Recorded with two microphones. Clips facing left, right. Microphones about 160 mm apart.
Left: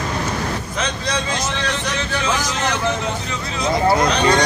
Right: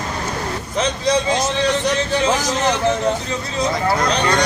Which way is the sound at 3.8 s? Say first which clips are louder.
Left 4 dB; 20° left (ahead or behind).